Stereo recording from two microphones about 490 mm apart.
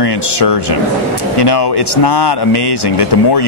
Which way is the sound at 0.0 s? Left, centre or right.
Left.